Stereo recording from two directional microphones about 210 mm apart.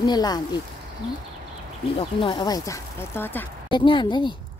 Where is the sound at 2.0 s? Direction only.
25° left (ahead or behind).